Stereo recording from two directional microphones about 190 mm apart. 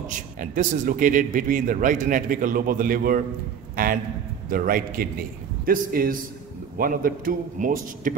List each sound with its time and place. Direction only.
0.4 s a man's voice: 45° right (ahead or behind)